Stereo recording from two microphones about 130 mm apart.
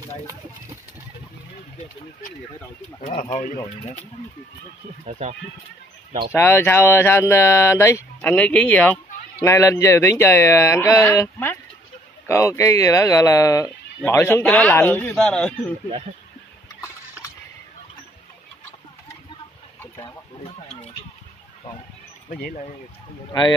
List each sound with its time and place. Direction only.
3.0 s speech: 60° left (ahead or behind)
6.3 s speech: 20° left (ahead or behind)
20.4 s a sound: 55° left (ahead or behind)
22.3 s speech: 85° left